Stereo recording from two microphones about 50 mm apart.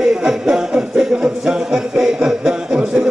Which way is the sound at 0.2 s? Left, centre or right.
Centre.